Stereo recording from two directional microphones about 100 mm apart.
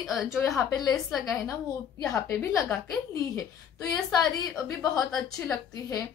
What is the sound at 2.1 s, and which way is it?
Speech, 25° left (ahead or behind).